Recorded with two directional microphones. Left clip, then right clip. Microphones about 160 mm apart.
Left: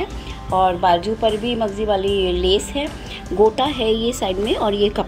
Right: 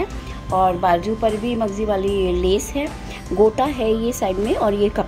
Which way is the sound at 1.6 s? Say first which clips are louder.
Left 1 dB; 15° right (ahead or behind).